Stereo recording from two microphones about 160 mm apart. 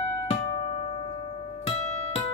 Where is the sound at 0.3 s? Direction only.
40° left (ahead or behind).